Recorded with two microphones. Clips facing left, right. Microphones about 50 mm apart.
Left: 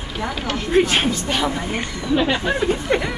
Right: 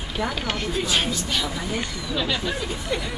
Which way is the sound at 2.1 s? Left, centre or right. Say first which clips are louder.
Left 7 dB; left.